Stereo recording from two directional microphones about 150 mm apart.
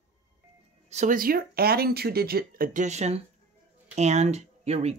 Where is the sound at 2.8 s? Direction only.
45° right (ahead or behind).